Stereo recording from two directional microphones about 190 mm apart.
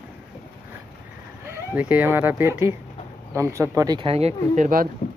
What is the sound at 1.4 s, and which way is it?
Speech, 10° right (ahead or behind).